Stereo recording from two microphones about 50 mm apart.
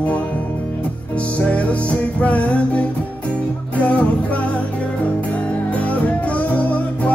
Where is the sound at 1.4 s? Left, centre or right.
Left.